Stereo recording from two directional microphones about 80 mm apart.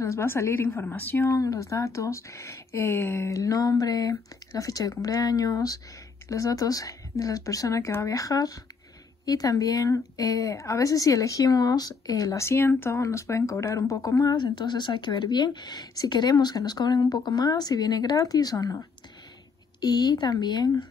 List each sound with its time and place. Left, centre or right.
0.0 s speech: left
1.1 s speech: left
12.4 s speech: left
14.3 s a woman's voice: left
19.8 s a woman's voice: left